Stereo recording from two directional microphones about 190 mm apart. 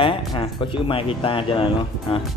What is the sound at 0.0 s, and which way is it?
Speech, 25° left (ahead or behind).